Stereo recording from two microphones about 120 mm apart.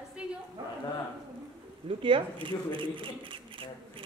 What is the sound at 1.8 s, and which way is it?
Speech, 45° right (ahead or behind).